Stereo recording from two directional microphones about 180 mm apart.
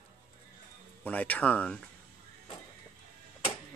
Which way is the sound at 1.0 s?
10° left (ahead or behind).